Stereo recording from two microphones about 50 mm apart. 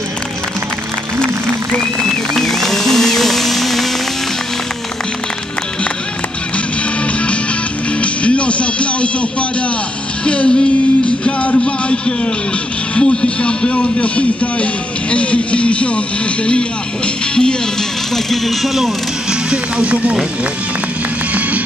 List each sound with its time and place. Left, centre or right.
2.3 s music: centre
7.1 s music: left
12.9 s speech: centre
18.1 s speech: centre
19.5 s speech: right